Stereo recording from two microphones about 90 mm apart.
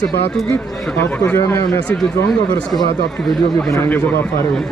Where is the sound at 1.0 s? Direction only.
25° left (ahead or behind).